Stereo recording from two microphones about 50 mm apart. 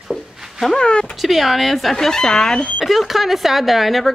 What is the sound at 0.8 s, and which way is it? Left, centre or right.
Speech, centre.